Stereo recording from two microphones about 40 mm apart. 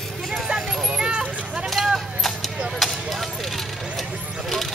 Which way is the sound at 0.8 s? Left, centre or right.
Right.